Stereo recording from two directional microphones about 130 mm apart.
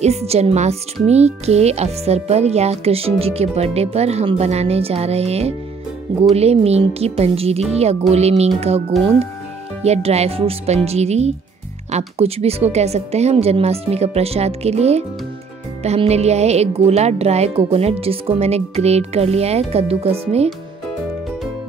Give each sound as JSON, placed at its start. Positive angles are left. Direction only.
{"t": 0.0, "sound": "speech", "side_deg": -55}
{"t": 9.8, "sound": "speech", "side_deg": -55}